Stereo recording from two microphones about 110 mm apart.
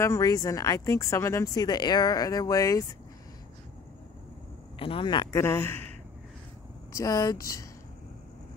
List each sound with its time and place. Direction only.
0.0 s speech: 30° left (ahead or behind)
4.7 s speech: 55° left (ahead or behind)
5.3 s speech: 20° left (ahead or behind)
6.9 s speech: 30° left (ahead or behind)